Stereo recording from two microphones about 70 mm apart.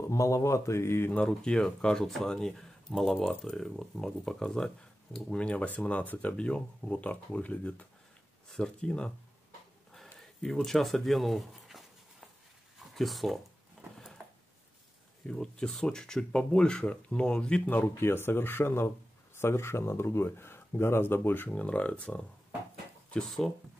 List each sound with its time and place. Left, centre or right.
0.1 s speech: left
1.1 s speech: centre
10.1 s speech: centre
12.7 s a sound: centre
15.2 s speech: centre
17.7 s speech: left
21.5 s speech: centre
23.1 s speech: centre